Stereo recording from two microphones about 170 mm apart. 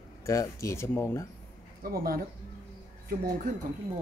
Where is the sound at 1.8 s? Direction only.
60° right (ahead or behind).